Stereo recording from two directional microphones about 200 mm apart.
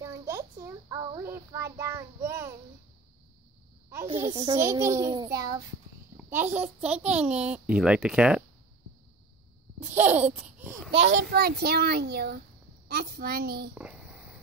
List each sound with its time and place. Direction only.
0.0 s child singing: 15° right (ahead or behind)
4.3 s a child's voice: 30° right (ahead or behind)
4.6 s child singing: 15° right (ahead or behind)
6.1 s a child's voice: 10° right (ahead or behind)
9.8 s speech: 10° right (ahead or behind)
10.9 s a child's voice: 30° right (ahead or behind)
11.2 s a child's voice: 50° right (ahead or behind)
13.7 s a sound: 5° right (ahead or behind)